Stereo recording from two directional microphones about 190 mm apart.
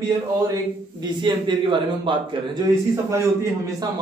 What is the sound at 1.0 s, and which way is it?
A man's voice, 25° right (ahead or behind).